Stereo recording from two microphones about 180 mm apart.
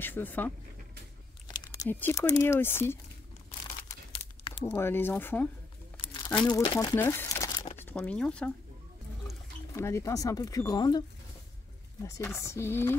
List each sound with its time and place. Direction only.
0.0 s speech: 10° left (ahead or behind)
1.5 s speech: 20° left (ahead or behind)
4.6 s speech: 15° left (ahead or behind)
6.4 s speech: 25° left (ahead or behind)
7.9 s speech: 5° left (ahead or behind)
9.8 s speech: 15° left (ahead or behind)